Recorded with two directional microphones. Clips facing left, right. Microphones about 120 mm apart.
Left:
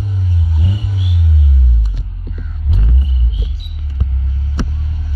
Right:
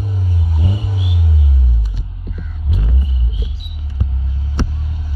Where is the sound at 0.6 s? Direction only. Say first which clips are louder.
Even; 30° right (ahead or behind).